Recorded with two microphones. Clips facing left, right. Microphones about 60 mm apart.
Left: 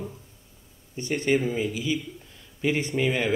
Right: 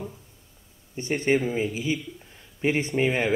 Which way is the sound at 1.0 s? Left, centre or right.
Right.